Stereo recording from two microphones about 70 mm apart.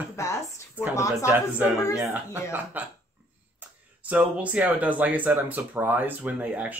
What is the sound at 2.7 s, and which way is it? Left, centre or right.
Speech, right.